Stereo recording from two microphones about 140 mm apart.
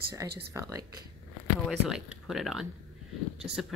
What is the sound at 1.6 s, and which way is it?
Speech, 5° right (ahead or behind).